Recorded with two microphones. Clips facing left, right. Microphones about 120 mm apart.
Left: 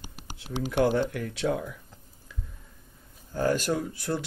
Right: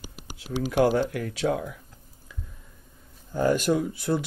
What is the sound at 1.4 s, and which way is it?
Speech, 50° right (ahead or behind).